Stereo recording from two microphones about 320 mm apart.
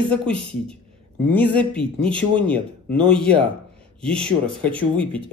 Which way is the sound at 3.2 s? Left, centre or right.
Centre.